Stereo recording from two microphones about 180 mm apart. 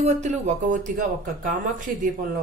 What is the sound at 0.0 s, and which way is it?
Speech, 40° right (ahead or behind).